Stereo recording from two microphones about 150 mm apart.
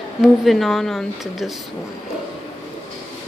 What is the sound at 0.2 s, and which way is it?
A woman's voice, centre (ahead or behind).